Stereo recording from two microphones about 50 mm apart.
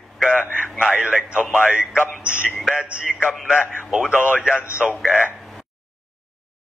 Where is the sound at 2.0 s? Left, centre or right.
Left.